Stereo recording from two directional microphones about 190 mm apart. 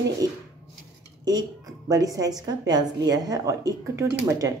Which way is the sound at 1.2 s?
20° right (ahead or behind).